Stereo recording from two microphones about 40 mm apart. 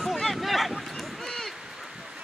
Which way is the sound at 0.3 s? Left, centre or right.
Centre.